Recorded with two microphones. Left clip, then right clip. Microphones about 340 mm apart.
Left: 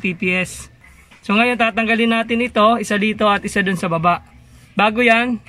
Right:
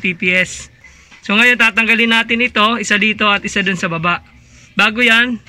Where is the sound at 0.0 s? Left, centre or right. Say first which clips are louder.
Right 5 dB; centre.